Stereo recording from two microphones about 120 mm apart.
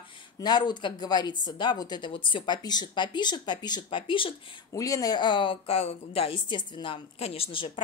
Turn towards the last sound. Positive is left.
turn(degrees=45)  # may be behind; listen again after turning